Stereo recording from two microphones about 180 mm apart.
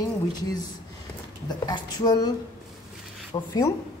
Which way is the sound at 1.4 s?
20° left (ahead or behind).